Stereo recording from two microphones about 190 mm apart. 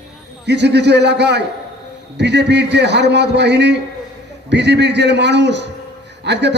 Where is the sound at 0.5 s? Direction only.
65° right (ahead or behind).